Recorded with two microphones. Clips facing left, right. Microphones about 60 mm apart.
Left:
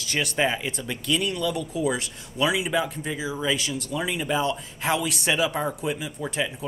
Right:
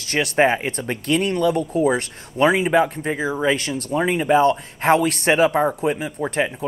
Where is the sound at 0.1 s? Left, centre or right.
Right.